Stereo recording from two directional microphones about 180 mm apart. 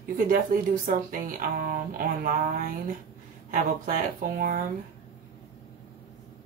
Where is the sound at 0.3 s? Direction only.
50° right (ahead or behind).